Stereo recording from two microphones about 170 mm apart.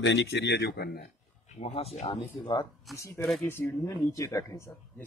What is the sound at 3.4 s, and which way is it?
Speech, 15° left (ahead or behind).